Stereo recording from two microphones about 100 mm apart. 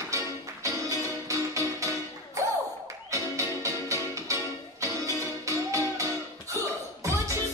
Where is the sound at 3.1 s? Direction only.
30° right (ahead or behind).